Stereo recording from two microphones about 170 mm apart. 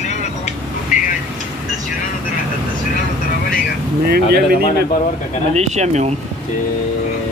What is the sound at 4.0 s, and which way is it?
Speech, 65° right (ahead or behind).